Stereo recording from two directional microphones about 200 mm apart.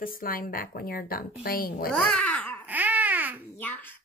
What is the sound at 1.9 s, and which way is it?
Speech, 5° left (ahead or behind).